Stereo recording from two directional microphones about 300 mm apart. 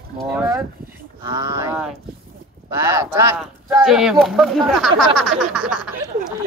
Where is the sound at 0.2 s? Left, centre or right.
Centre.